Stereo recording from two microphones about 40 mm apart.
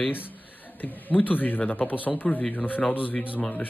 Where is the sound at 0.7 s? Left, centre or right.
Left.